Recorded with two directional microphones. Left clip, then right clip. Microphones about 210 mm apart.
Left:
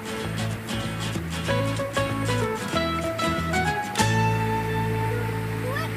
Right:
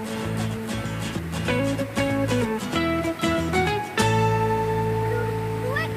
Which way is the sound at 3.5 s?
Centre (ahead or behind).